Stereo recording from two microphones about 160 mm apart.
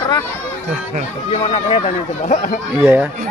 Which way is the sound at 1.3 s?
40° left (ahead or behind).